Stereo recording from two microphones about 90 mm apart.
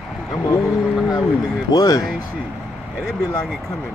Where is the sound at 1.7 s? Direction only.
45° left (ahead or behind).